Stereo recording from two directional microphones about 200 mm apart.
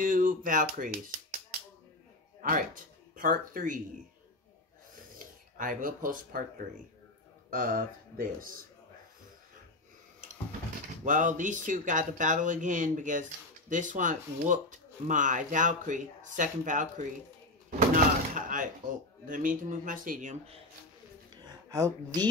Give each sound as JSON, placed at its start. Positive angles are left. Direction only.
{"t": 0.0, "sound": "speech", "side_deg": -45}
{"t": 2.4, "sound": "speech", "side_deg": -40}
{"t": 5.2, "sound": "speech", "side_deg": -40}
{"t": 7.5, "sound": "speech", "side_deg": -45}
{"t": 11.1, "sound": "speech", "side_deg": -40}
{"t": 17.7, "sound": "a sound", "side_deg": -40}
{"t": 19.2, "sound": "speech", "side_deg": -45}
{"t": 21.6, "sound": "speech", "side_deg": -20}